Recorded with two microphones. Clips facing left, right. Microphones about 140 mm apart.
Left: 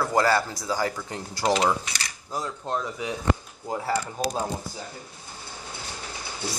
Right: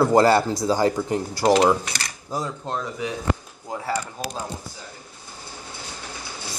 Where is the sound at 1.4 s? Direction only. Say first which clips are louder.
Right 5 dB; 45° right (ahead or behind).